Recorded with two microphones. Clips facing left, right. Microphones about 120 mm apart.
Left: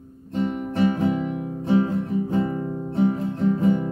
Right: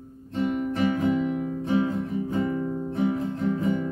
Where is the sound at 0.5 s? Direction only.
35° left (ahead or behind).